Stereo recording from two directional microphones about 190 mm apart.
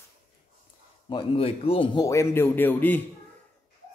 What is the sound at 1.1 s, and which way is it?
Speech, 30° left (ahead or behind).